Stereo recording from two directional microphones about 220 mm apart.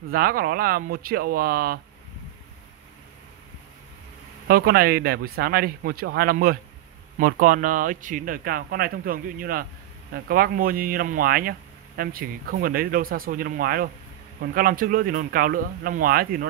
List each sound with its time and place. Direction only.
0.1 s speech: 40° right (ahead or behind)
4.5 s speech: 45° right (ahead or behind)